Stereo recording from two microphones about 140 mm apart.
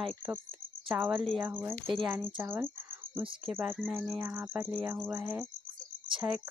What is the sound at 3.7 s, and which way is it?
Speech, centre (ahead or behind).